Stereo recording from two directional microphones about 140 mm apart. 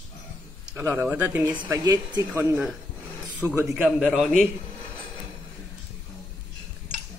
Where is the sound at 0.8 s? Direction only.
10° right (ahead or behind).